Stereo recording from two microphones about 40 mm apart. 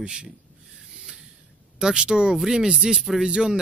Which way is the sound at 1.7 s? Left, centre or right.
Centre.